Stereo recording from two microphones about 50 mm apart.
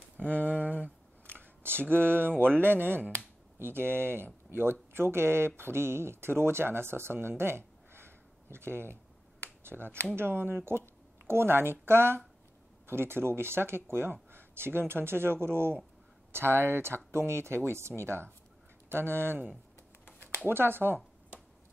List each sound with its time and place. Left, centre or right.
0.4 s speech: right
1.2 s speech: right
20.4 s speech: right